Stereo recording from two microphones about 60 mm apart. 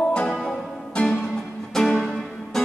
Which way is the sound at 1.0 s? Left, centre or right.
Centre.